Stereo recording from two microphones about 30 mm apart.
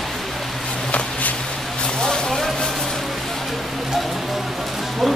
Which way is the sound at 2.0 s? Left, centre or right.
Left.